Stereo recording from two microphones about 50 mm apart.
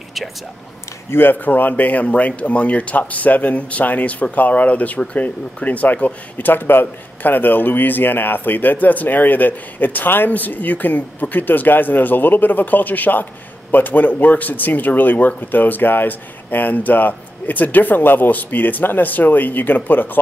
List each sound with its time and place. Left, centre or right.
1.1 s speech: left